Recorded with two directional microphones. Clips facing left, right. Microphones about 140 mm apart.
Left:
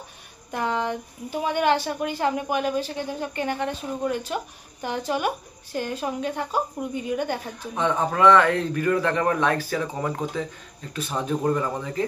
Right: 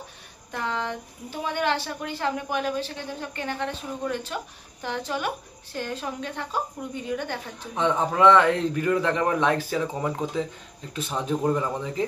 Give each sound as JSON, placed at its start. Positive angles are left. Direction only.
{"t": 0.5, "sound": "speech", "side_deg": 15}
{"t": 7.7, "sound": "speech", "side_deg": -20}
{"t": 11.4, "sound": "speech", "side_deg": -15}